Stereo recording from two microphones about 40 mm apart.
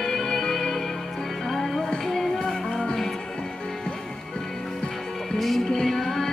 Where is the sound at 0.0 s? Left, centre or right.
Centre.